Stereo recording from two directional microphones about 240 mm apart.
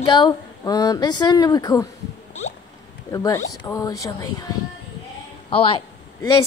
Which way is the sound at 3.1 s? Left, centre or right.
Centre.